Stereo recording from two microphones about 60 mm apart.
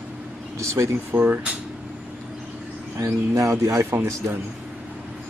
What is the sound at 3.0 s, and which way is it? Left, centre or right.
Speech, right.